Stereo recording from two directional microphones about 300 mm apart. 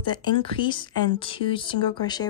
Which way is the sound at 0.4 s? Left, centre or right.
Centre.